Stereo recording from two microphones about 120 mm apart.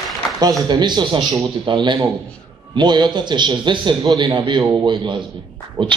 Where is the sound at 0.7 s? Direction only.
40° right (ahead or behind).